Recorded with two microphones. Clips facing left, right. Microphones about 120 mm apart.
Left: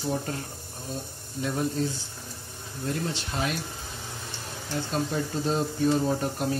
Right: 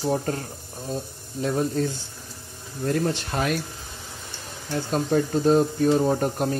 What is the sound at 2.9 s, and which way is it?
Speech, 55° right (ahead or behind).